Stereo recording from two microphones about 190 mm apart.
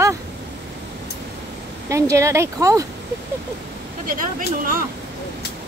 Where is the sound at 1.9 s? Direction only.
15° right (ahead or behind).